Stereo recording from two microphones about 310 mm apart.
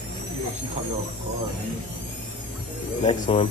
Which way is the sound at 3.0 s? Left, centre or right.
Centre.